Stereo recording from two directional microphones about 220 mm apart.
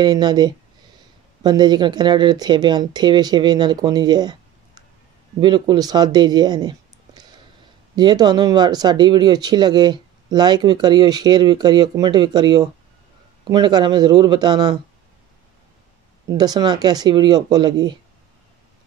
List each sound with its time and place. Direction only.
0.0 s speech: 20° right (ahead or behind)
7.9 s speech: 20° right (ahead or behind)
16.3 s speech: 20° right (ahead or behind)